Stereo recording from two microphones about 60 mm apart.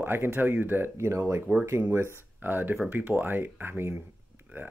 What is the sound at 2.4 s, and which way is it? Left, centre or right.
Speech, right.